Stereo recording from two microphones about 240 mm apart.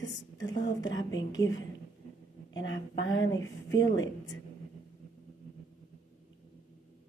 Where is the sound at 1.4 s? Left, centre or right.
Centre.